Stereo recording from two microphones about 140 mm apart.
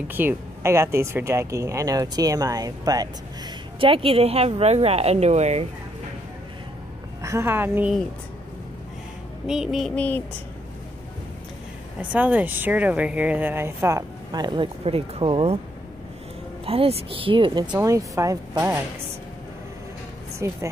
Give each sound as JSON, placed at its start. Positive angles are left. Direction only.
{"t": 0.1, "sound": "speech", "side_deg": -15}
{"t": 3.8, "sound": "speech", "side_deg": -40}
{"t": 7.2, "sound": "speech", "side_deg": -20}
{"t": 9.5, "sound": "child singing", "side_deg": -5}
{"t": 9.9, "sound": "speech", "side_deg": 10}
{"t": 12.0, "sound": "speech", "side_deg": -10}
{"t": 16.6, "sound": "speech", "side_deg": -45}
{"t": 17.7, "sound": "speech", "side_deg": -20}
{"t": 20.3, "sound": "speech", "side_deg": -20}